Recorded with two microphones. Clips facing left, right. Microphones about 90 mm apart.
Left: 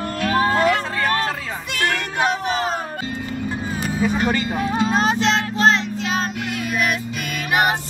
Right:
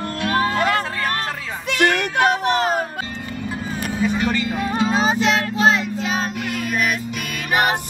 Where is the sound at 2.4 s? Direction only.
65° right (ahead or behind).